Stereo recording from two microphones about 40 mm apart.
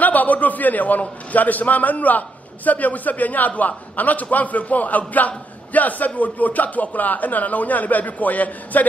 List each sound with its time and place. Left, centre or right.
0.0 s a man's voice: left